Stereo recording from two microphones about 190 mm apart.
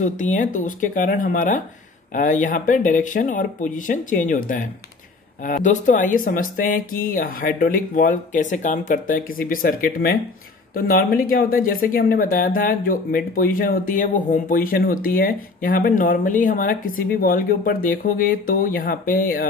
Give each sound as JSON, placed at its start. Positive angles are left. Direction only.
{"t": 0.0, "sound": "speech", "side_deg": 40}